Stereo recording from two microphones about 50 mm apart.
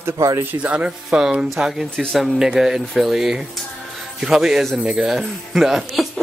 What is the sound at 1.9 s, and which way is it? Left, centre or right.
Speech, centre.